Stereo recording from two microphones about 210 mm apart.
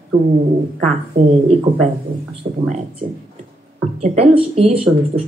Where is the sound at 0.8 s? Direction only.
35° right (ahead or behind).